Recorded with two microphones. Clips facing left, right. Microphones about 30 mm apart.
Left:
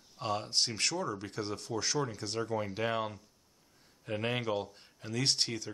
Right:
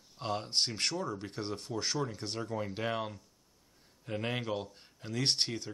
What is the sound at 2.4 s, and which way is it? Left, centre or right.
Speech, centre.